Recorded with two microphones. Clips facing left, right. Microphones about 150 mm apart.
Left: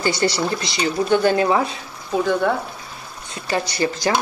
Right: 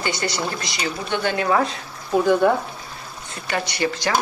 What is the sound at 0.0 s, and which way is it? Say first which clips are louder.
Speech: left 5 dB; 35° left (ahead or behind).